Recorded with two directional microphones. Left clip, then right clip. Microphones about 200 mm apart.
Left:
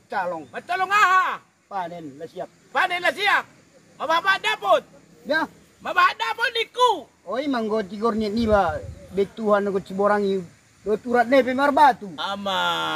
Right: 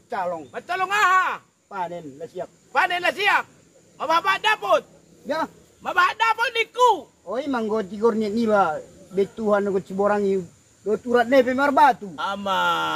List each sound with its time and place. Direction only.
0.1 s speech: 15° right (ahead or behind)
0.5 s speech: centre (ahead or behind)
1.8 s a man's voice: 15° right (ahead or behind)
2.7 s speech: 5° right (ahead or behind)
7.2 s a man's voice: 15° right (ahead or behind)